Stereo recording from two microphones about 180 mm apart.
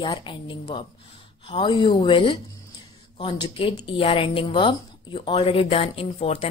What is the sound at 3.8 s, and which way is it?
Speech, 30° left (ahead or behind).